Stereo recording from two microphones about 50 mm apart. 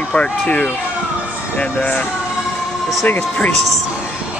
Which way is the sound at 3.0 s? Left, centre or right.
Left.